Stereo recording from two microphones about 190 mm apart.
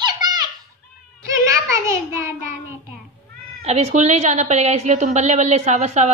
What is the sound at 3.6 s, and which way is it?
A woman's voice, 35° right (ahead or behind).